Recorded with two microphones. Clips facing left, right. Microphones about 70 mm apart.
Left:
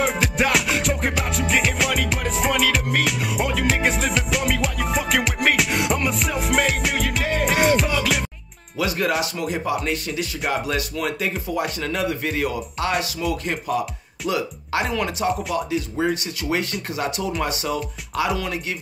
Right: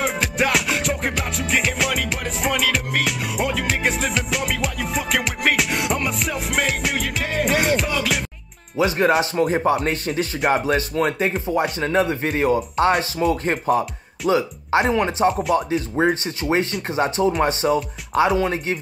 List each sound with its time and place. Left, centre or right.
0.0 s music: centre
8.7 s speech: right